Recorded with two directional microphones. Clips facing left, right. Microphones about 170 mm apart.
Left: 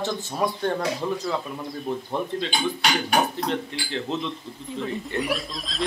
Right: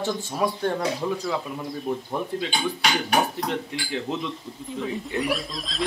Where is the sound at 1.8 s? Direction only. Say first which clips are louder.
Left 1 dB; 5° right (ahead or behind).